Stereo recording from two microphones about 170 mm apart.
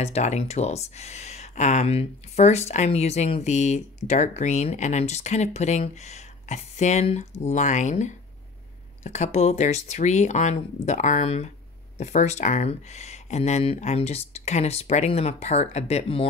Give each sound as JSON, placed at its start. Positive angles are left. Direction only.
{"t": 0.0, "sound": "speech", "side_deg": 40}